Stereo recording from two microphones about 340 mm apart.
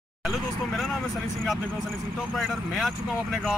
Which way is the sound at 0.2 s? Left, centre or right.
Centre.